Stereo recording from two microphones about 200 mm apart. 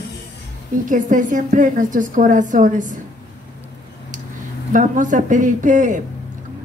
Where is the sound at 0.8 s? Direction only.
40° right (ahead or behind).